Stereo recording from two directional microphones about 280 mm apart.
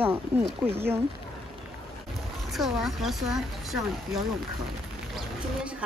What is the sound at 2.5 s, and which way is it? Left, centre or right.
A woman's voice, centre.